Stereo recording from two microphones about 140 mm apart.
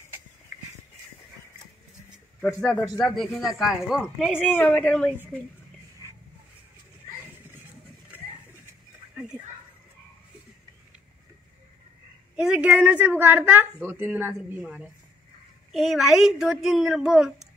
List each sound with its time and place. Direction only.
3.0 s a woman's voice: 5° left (ahead or behind)
4.3 s speech: 15° left (ahead or behind)
9.1 s a sound: 5° right (ahead or behind)
12.4 s a woman's voice: 10° right (ahead or behind)